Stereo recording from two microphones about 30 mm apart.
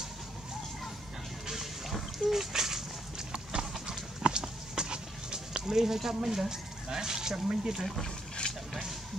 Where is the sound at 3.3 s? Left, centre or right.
Right.